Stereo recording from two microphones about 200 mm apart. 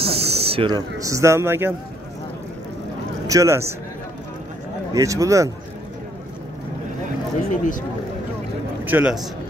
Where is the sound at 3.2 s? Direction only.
15° right (ahead or behind).